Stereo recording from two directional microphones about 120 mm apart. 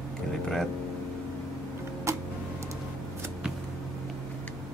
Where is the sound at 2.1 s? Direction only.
25° right (ahead or behind).